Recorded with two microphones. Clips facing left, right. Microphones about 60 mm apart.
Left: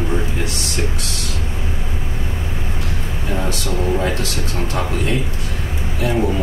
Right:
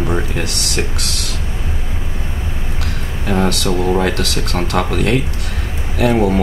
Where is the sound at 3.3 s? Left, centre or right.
Right.